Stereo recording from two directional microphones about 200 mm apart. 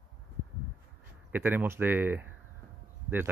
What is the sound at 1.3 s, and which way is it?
Speech, 10° right (ahead or behind).